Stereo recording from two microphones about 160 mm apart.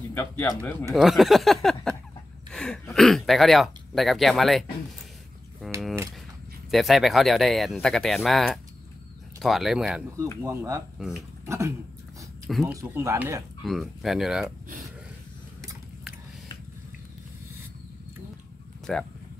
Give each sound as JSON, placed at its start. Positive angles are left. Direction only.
{"t": 0.1, "sound": "a man's voice", "side_deg": 20}
{"t": 0.9, "sound": "speech", "side_deg": 0}
{"t": 6.7, "sound": "speech", "side_deg": 0}
{"t": 10.4, "sound": "speech", "side_deg": -20}
{"t": 12.4, "sound": "speech", "side_deg": 0}
{"t": 12.7, "sound": "speech", "side_deg": -15}
{"t": 13.6, "sound": "speech", "side_deg": 0}
{"t": 18.9, "sound": "speech", "side_deg": 5}